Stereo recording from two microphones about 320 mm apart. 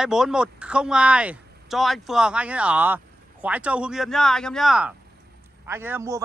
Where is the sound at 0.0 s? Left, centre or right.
Centre.